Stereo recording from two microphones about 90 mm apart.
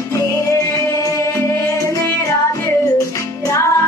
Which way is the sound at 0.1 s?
35° left (ahead or behind).